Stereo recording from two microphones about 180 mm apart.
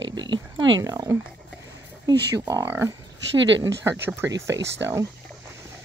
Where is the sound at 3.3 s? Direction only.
90° right.